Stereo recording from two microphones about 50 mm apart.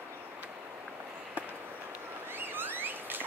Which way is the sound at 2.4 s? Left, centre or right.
Right.